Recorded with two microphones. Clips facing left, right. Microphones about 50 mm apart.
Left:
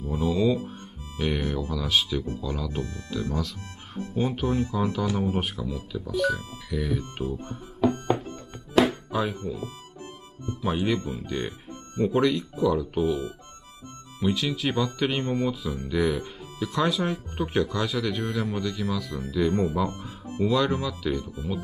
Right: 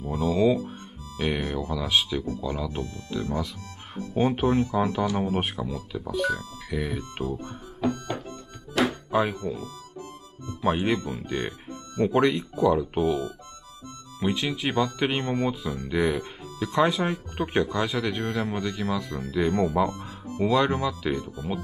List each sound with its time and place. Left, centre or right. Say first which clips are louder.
0.0 s music: right 1 dB; right
1.1 s speech: even; right
7.0 s speech: even; right
7.9 s music: left 5 dB; left
9.1 s speech: right 3 dB; right
10.6 s speech: right 2 dB; right
14.2 s speech: left 1 dB; right
21.2 s speech: right 1 dB; right